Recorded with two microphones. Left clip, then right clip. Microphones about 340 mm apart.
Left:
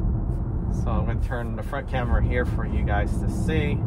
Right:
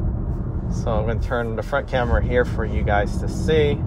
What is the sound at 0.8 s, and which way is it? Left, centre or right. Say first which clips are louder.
Speech: right 9 dB; right.